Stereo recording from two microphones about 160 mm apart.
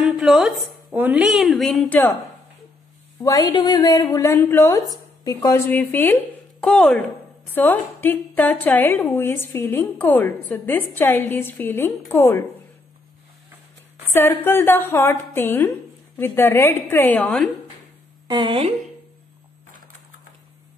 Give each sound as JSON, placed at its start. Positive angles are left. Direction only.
{"t": 0.0, "sound": "a woman's voice", "side_deg": -5}
{"t": 3.2, "sound": "a woman's voice", "side_deg": 25}
{"t": 14.1, "sound": "a woman's voice", "side_deg": 15}
{"t": 18.3, "sound": "speech", "side_deg": -30}